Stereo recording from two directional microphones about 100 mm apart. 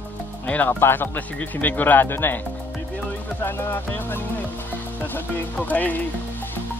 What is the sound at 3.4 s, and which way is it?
Speech, 20° left (ahead or behind).